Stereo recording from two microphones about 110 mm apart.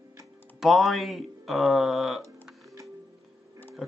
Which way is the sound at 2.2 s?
30° right (ahead or behind).